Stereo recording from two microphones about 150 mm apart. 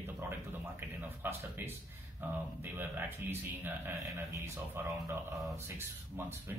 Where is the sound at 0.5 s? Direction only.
15° right (ahead or behind).